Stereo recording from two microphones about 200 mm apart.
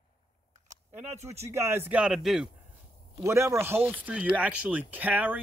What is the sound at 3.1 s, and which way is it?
Speech, 15° right (ahead or behind).